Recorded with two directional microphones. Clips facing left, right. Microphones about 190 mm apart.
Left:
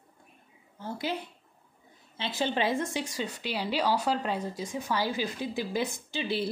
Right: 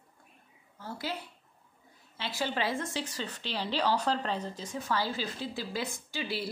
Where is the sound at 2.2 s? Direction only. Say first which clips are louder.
Left 4 dB; 20° left (ahead or behind).